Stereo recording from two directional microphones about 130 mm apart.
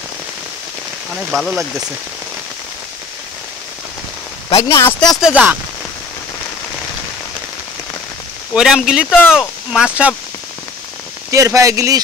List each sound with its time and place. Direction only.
1.1 s speech: centre (ahead or behind)
4.6 s speech: 20° left (ahead or behind)
5.2 s speech: 10° right (ahead or behind)
8.5 s speech: 5° right (ahead or behind)
11.2 s speech: 25° right (ahead or behind)